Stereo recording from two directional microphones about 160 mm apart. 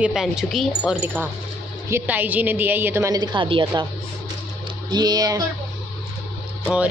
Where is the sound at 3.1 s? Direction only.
30° right (ahead or behind).